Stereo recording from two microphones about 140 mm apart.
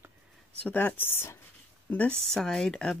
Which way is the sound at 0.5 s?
10° left (ahead or behind).